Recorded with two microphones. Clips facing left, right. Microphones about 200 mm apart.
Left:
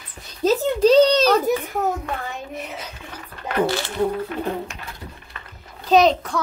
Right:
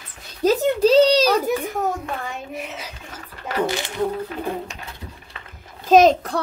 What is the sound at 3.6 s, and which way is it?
Speech, 15° right (ahead or behind).